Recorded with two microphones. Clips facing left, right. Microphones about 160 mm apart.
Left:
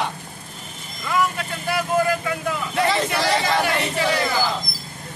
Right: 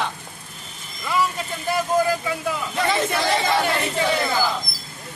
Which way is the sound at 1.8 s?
15° right (ahead or behind).